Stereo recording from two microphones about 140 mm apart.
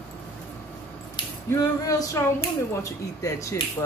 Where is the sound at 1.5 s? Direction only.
25° left (ahead or behind).